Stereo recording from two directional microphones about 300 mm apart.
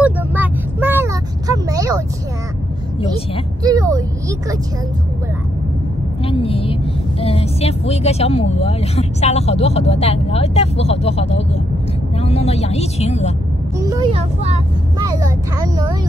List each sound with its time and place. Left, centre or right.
0.0 s vehicle: centre
3.6 s vehicle: centre
6.2 s speech: centre
13.7 s speech: centre